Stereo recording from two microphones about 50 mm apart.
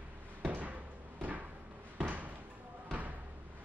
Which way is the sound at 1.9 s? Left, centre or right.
Right.